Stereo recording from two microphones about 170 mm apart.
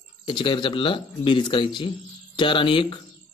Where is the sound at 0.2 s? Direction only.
30° left (ahead or behind).